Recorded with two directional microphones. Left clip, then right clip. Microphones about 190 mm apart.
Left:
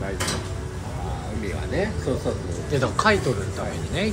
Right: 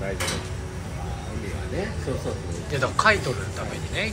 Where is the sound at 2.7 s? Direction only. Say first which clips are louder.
Even; 15° left (ahead or behind).